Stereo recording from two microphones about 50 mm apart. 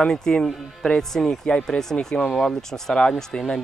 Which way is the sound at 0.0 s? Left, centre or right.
Centre.